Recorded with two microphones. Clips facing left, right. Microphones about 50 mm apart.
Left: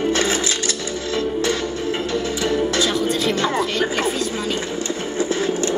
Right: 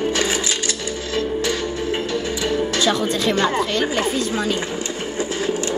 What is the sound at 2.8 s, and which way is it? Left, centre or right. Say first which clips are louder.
Music: right 1 dB; right.